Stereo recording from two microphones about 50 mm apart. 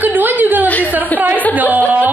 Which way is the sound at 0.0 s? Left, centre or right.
Right.